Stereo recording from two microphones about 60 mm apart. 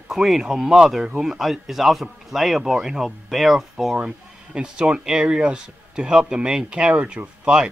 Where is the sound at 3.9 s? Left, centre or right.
Centre.